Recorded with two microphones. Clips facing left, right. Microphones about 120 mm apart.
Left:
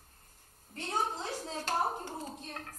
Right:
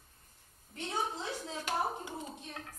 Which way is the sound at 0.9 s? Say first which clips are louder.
Left 2 dB; 40° left (ahead or behind).